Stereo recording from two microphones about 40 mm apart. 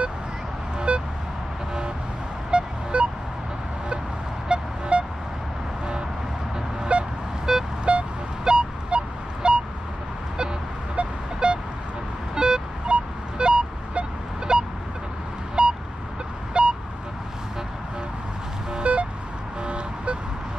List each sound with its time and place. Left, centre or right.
0.9 s vehicle: right
2.5 s vehicle: right
4.5 s vehicle: right
6.9 s vehicle: right
7.5 s vehicle: centre
7.9 s vehicle: right
11.3 s vehicle: right
15.6 s a sound: right
16.6 s vehicle: right
18.9 s vehicle: right